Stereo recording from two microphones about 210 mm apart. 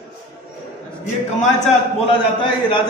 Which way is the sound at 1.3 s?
30° left (ahead or behind).